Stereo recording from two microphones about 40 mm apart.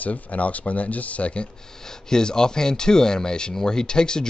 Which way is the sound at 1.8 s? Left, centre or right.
Centre.